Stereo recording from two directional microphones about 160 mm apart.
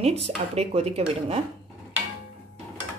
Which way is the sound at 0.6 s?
40° right (ahead or behind).